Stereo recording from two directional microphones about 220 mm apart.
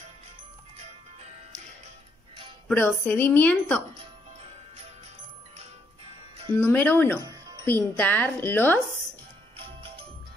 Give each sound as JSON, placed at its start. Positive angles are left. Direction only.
{"t": 2.7, "sound": "a woman's voice", "side_deg": 5}
{"t": 6.5, "sound": "a woman's voice", "side_deg": 10}